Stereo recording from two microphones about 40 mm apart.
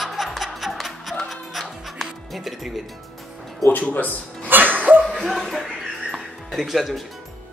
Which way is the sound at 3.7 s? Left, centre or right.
Left.